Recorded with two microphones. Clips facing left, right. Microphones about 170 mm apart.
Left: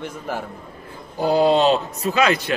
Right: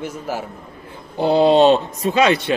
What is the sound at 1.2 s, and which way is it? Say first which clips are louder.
Speech: right 2 dB; 25° right (ahead or behind).